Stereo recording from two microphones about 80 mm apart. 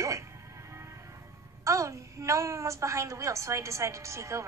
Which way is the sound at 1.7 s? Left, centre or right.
Right.